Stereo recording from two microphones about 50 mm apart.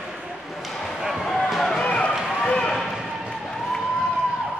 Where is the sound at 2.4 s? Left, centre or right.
Centre.